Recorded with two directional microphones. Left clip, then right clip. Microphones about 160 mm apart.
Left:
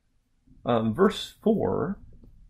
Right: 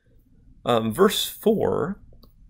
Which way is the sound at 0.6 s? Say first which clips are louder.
Right 4 dB; 20° right (ahead or behind).